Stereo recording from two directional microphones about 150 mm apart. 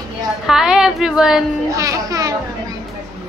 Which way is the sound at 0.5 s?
5° right (ahead or behind).